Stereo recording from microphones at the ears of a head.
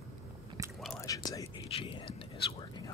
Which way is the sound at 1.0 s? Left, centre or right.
Left.